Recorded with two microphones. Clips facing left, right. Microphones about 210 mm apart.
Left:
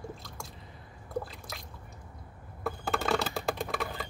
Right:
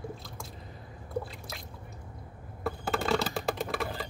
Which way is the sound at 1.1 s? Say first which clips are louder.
Right 1 dB; centre (ahead or behind).